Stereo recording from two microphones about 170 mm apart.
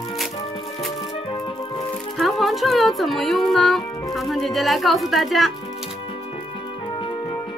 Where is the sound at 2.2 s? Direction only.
Centre (ahead or behind).